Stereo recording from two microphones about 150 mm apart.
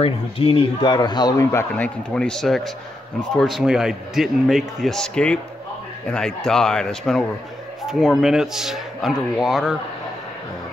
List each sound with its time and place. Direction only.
0.0 s speech: 40° left (ahead or behind); by 9.8 s 5° right (ahead or behind)